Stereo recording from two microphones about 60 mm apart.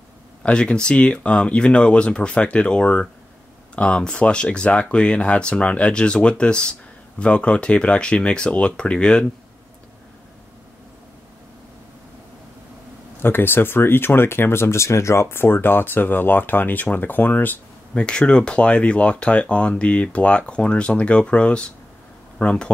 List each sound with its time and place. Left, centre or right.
0.4 s speech: centre
13.2 s speech: left
17.9 s speech: centre